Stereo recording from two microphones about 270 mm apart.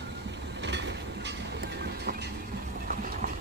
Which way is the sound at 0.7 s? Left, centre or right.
Right.